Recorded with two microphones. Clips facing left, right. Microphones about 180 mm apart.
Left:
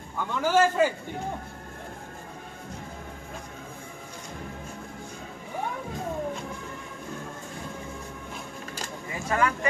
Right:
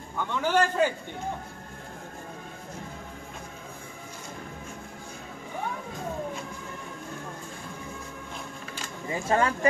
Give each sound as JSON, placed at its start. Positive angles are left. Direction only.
{"t": 0.3, "sound": "a man's voice", "side_deg": 5}
{"t": 9.1, "sound": "speech", "side_deg": -30}